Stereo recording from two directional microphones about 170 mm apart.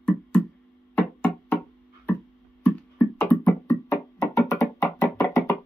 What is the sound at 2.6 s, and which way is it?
Music, 10° left (ahead or behind).